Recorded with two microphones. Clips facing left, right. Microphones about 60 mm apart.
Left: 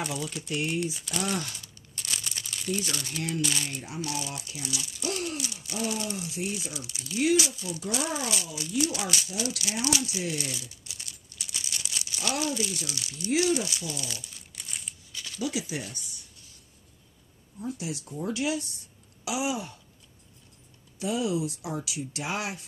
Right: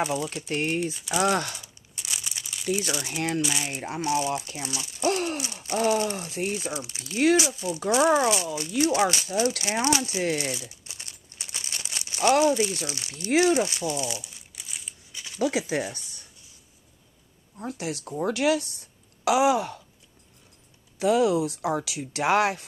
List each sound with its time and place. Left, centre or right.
0.0 s speech: centre
0.5 s speech: right
1.2 s speech: right
1.6 s crumpling: centre
2.9 s speech: centre
4.0 s speech: right
5.4 s speech: right
14.5 s crumpling: centre
15.1 s a sound: centre
15.4 s speech: right
17.6 s speech: right
21.0 s speech: right